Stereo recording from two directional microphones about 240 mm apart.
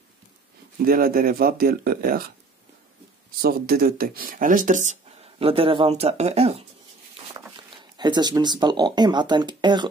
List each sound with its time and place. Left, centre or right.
0.8 s speech: right
3.3 s speech: right
7.3 s dog: centre
7.7 s speech: centre